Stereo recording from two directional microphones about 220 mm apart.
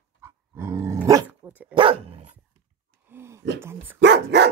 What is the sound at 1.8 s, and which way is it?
Dog, 25° right (ahead or behind).